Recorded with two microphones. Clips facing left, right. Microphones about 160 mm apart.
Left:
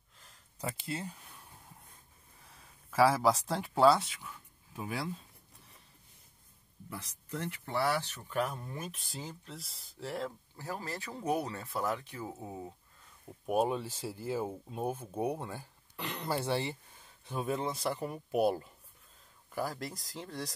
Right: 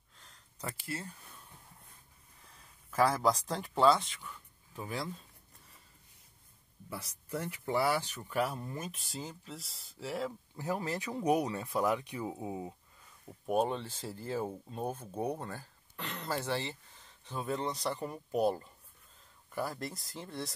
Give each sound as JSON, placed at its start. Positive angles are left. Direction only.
{"t": 0.2, "sound": "a sound", "side_deg": 5}
{"t": 0.7, "sound": "speech", "side_deg": 20}
{"t": 3.0, "sound": "speech", "side_deg": 5}
{"t": 6.9, "sound": "speech", "side_deg": -10}
{"t": 10.6, "sound": "speech", "side_deg": -20}
{"t": 13.5, "sound": "speech", "side_deg": 5}